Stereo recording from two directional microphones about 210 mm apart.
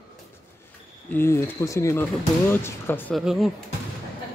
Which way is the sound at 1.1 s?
10° left (ahead or behind).